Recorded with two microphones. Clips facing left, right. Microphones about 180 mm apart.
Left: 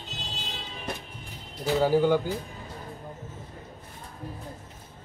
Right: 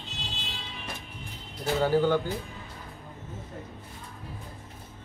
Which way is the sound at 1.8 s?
10° left (ahead or behind).